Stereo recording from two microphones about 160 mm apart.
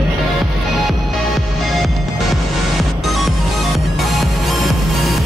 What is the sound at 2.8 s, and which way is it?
Music, centre (ahead or behind).